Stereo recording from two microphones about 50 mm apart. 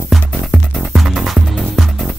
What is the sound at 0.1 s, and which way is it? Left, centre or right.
Music, centre.